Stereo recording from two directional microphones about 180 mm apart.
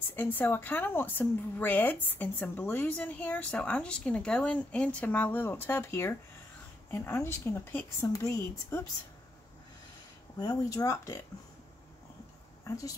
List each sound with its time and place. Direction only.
0.1 s a woman's voice: 10° left (ahead or behind)
10.4 s speech: 20° left (ahead or behind)
12.6 s speech: 20° left (ahead or behind)